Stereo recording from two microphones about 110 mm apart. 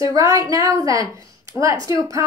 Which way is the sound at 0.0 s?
30° right (ahead or behind).